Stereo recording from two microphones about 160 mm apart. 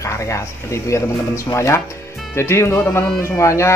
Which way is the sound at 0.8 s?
20° left (ahead or behind).